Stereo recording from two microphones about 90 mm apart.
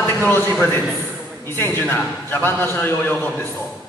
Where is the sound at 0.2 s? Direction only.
20° left (ahead or behind).